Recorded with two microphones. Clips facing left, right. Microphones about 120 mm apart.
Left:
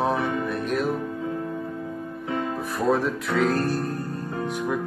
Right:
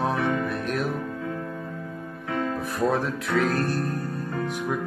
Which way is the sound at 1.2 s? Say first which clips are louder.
Left 2 dB; 25° left (ahead or behind).